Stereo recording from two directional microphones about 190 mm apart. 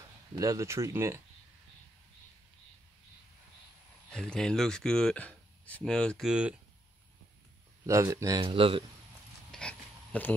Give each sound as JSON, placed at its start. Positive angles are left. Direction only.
{"t": 0.4, "sound": "speech", "side_deg": -15}
{"t": 4.1, "sound": "speech", "side_deg": 5}
{"t": 7.8, "sound": "speech", "side_deg": -15}
{"t": 9.5, "sound": "a sound", "side_deg": 5}